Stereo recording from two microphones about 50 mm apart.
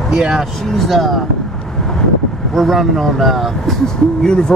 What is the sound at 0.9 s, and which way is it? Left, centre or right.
Speech, centre.